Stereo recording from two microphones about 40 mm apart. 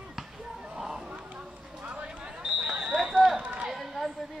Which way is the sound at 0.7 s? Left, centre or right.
Centre.